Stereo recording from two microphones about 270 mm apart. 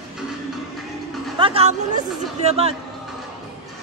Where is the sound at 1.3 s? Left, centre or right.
Centre.